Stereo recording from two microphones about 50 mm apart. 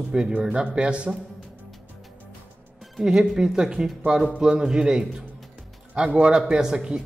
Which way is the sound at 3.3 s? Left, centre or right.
Centre.